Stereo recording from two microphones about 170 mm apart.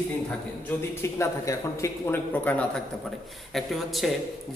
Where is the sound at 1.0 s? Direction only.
15° left (ahead or behind).